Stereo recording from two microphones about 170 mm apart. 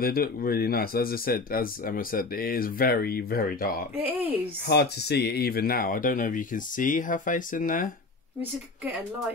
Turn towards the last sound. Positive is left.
turn(degrees=50)  # may be behind; listen again after turning